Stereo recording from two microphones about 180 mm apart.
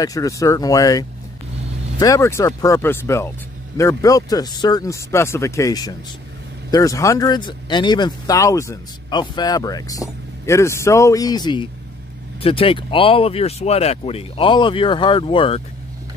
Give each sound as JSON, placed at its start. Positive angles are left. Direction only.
{"t": 0.0, "sound": "speech", "side_deg": 20}